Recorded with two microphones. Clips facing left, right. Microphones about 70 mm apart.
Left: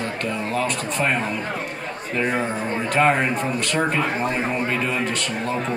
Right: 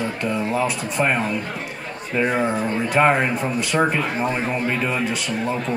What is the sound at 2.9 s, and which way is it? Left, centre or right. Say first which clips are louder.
Speech: right 1 dB; centre.